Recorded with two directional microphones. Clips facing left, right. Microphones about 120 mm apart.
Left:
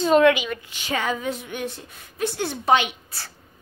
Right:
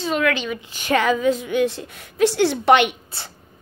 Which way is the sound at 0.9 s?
90° right.